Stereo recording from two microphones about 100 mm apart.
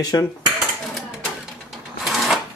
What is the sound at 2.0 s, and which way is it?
Sewing machine, centre (ahead or behind).